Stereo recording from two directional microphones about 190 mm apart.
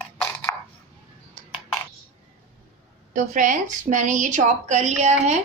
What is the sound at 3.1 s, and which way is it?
A woman's voice, 45° right (ahead or behind).